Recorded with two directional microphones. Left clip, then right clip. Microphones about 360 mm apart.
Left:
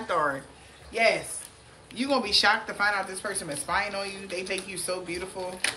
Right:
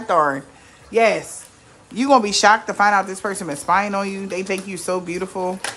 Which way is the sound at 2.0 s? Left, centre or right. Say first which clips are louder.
Right 9 dB; centre.